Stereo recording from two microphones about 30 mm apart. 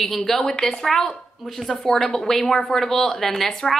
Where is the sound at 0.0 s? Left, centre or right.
Centre.